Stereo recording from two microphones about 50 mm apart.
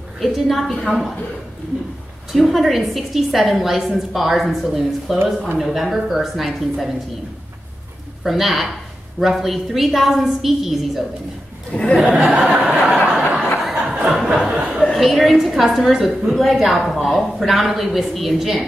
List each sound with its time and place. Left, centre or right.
0.2 s a woman's voice: centre
2.3 s a woman's voice: centre
8.2 s a woman's voice: centre
11.7 s speech: centre
12.0 s speech: right
12.3 s a sound: centre
12.9 s chuckle: right
13.7 s a sound: right
14.9 s a woman's voice: centre